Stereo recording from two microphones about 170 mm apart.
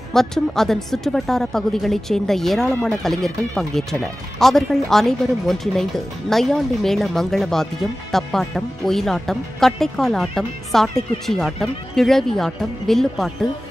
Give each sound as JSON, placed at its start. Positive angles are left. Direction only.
{"t": 0.1, "sound": "speech", "side_deg": 0}